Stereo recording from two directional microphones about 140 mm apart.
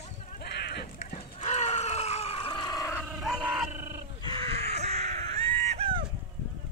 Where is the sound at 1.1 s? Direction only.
50° left (ahead or behind); by 3.0 s 25° left (ahead or behind).